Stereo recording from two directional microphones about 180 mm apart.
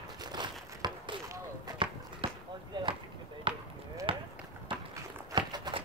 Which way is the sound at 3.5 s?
30° right (ahead or behind).